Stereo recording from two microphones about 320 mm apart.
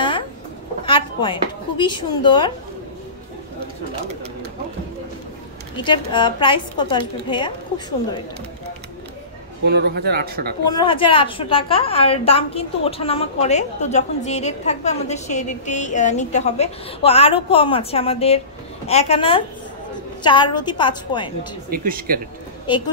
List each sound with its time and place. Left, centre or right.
0.8 s speech: centre
5.9 s a woman's voice: centre
9.7 s speech: right
10.7 s a woman's voice: centre
21.6 s speech: right